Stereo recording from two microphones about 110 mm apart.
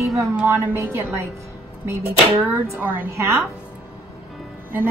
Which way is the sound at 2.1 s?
65° right (ahead or behind).